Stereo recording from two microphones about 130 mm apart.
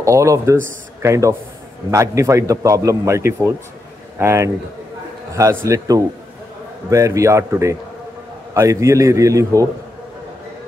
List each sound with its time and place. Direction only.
0.0 s a man's voice: 25° right (ahead or behind)